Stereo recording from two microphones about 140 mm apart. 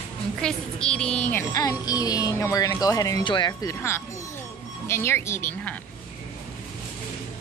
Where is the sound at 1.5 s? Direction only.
25° left (ahead or behind).